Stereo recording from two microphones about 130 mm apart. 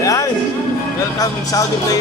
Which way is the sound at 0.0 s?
25° left (ahead or behind).